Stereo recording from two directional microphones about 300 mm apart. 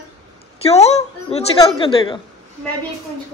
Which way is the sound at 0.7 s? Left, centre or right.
Left.